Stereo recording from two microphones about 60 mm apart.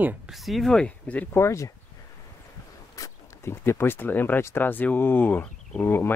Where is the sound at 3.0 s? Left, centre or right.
Left.